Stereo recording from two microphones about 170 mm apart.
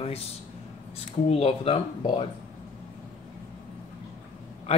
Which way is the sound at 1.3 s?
35° left (ahead or behind).